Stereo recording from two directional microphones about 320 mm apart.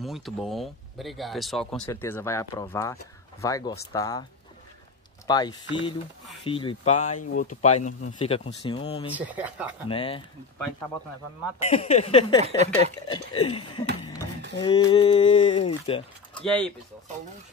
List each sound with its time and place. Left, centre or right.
0.0 s speech: centre
5.2 s speech: centre
9.1 s speech: centre
9.8 s speech: centre
11.6 s speech: centre
12.4 s speech: centre
13.1 s speech: centre
16.3 s speech: centre